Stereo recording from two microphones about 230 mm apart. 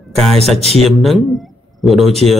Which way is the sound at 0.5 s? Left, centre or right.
Left.